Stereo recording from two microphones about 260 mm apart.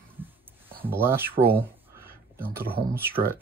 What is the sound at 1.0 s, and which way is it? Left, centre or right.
Speech, centre.